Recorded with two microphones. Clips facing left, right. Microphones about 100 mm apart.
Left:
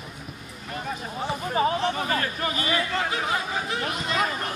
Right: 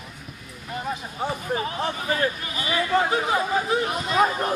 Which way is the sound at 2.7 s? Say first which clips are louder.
Right 8 dB; 25° right (ahead or behind).